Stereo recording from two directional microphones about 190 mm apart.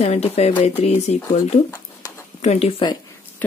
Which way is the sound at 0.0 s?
30° left (ahead or behind).